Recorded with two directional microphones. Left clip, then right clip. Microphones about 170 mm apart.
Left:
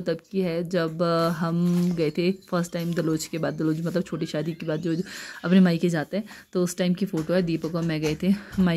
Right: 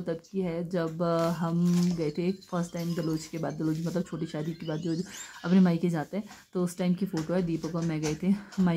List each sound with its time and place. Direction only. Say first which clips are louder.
0.0 s a woman's voice: left 6 dB; 20° left (ahead or behind)